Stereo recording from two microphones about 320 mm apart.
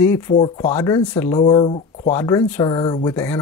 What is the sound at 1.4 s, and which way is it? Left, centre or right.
Speech, centre.